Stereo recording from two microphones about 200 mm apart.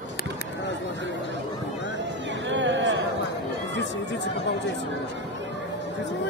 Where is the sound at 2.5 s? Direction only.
65° right (ahead or behind).